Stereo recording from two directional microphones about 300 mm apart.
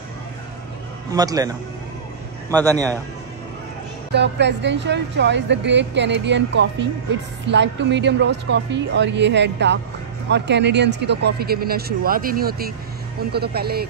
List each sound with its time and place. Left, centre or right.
1.1 s a man's voice: centre
4.1 s a woman's voice: right